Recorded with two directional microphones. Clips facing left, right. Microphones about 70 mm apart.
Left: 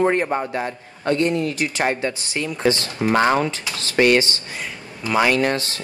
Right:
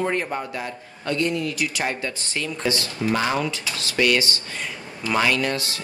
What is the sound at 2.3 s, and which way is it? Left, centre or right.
Speech, centre.